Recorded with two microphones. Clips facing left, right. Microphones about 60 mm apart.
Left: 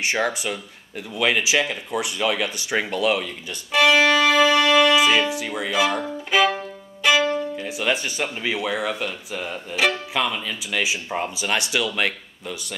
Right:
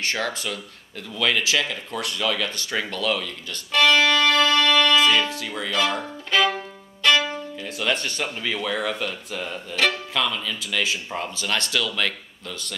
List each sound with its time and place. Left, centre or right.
0.0 s speech: centre
3.7 s music: centre
7.5 s speech: centre